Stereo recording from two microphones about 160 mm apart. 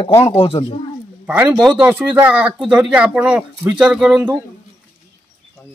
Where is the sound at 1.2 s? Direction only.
10° right (ahead or behind).